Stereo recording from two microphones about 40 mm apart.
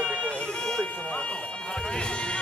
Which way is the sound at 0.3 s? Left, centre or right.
Left.